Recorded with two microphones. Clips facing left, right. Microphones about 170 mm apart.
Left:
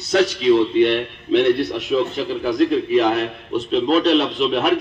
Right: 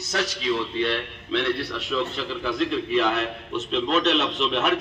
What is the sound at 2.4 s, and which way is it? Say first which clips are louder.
Speech: left 7 dB; 40° left (ahead or behind).